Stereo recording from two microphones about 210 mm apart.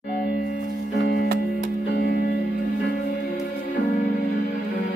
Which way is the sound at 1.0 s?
50° left (ahead or behind).